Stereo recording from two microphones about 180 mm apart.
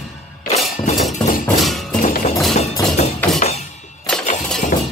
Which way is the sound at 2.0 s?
50° left (ahead or behind).